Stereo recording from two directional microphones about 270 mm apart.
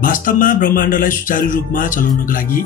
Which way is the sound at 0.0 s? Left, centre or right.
Left.